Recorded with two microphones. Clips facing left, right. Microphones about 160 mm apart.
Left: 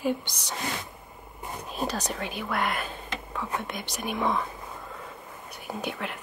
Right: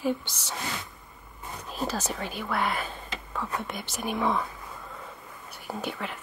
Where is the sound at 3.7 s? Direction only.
15° left (ahead or behind).